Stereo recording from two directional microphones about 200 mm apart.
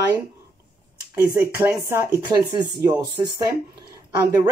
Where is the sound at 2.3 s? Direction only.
20° right (ahead or behind).